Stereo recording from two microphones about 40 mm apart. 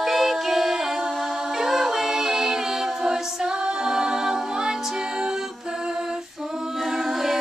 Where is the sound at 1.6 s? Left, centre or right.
Centre.